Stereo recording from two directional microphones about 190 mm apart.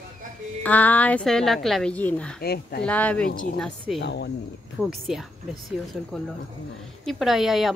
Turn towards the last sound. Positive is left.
turn(degrees=0)  # may be behind; listen again after turning